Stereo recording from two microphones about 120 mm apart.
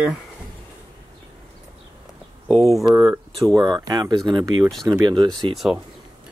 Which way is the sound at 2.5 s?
Centre (ahead or behind).